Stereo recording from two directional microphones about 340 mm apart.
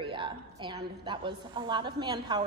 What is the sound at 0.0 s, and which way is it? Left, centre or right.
A woman's voice, centre.